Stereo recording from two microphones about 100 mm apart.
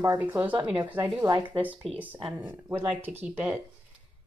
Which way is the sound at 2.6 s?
20° right (ahead or behind).